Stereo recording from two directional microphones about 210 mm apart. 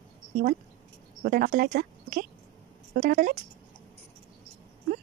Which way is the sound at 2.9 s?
35° right (ahead or behind).